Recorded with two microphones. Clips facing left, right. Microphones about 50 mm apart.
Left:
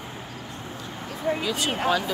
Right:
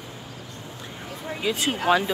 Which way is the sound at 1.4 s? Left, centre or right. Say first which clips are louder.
Right 1 dB; right.